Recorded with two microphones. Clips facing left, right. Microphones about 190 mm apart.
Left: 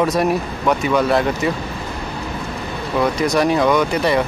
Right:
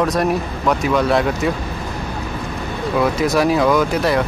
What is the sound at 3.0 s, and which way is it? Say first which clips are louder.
Speech: even; centre (ahead or behind).